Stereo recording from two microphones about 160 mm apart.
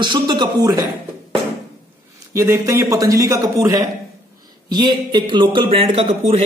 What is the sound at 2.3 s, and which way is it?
Speech, 20° right (ahead or behind).